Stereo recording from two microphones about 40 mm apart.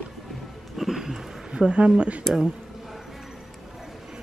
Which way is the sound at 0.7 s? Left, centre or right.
Centre.